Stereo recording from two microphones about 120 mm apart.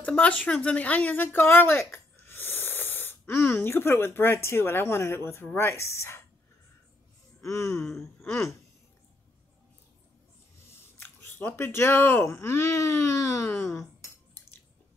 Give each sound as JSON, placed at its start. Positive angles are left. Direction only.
{"t": 0.0, "sound": "speech", "side_deg": 10}
{"t": 7.4, "sound": "speech", "side_deg": 25}
{"t": 10.7, "sound": "speech", "side_deg": 20}